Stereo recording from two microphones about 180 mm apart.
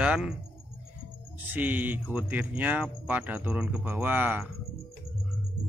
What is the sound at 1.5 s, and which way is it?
Speech, 10° right (ahead or behind).